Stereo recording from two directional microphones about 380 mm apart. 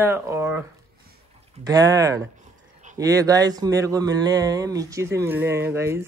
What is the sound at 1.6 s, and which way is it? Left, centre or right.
Speech, centre.